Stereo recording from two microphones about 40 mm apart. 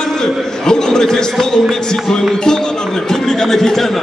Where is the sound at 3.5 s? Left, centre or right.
Centre.